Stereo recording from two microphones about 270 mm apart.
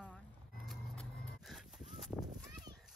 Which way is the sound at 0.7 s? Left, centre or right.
Centre.